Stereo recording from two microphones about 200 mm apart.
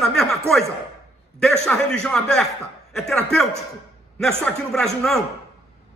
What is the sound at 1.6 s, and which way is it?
Speech, 5° left (ahead or behind).